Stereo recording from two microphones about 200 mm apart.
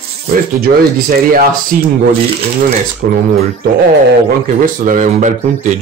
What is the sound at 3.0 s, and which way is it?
Speech, 50° right (ahead or behind).